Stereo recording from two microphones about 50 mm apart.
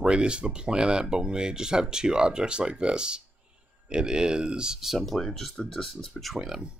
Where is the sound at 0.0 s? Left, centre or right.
Centre.